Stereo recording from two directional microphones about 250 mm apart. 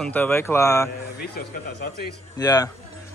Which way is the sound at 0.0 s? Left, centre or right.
Centre.